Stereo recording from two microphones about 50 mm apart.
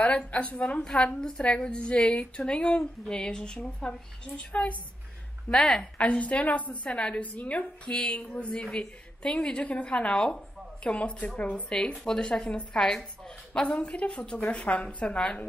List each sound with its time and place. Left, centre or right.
0.0 s a woman's voice: left
5.5 s a woman's voice: centre
5.9 s a woman's voice: left
11.7 s a woman's voice: centre
13.6 s a woman's voice: left